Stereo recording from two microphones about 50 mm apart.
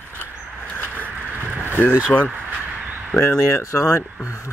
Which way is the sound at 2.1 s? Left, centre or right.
Left.